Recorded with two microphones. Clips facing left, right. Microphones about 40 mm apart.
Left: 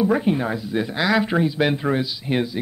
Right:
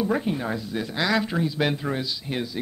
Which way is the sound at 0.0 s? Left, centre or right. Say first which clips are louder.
Left 5 dB; centre.